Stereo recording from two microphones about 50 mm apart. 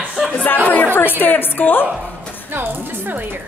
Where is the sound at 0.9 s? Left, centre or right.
Left.